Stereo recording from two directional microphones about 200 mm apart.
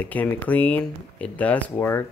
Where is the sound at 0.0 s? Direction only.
10° left (ahead or behind).